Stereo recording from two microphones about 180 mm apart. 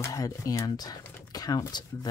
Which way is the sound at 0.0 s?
20° left (ahead or behind).